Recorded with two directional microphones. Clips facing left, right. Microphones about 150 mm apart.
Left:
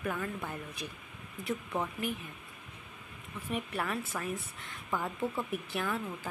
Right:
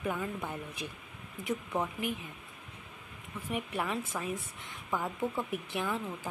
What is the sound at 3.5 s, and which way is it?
Speech, 15° right (ahead or behind).